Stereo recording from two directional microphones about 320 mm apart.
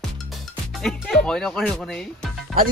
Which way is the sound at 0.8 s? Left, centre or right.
Centre.